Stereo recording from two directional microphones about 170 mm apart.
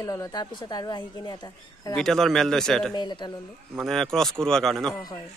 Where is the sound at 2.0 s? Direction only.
5° left (ahead or behind).